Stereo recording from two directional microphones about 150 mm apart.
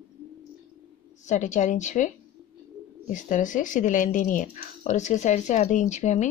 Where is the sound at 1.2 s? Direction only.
55° left (ahead or behind).